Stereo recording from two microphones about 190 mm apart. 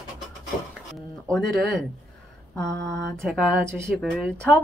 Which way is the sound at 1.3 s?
Centre (ahead or behind).